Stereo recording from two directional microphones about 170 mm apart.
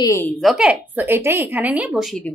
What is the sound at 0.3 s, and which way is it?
A woman's voice, centre (ahead or behind).